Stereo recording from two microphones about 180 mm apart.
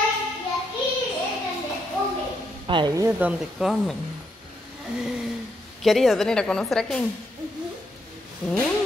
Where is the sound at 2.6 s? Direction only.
25° right (ahead or behind).